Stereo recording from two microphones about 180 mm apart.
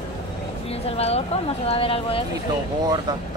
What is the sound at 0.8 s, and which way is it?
Speech, 35° left (ahead or behind).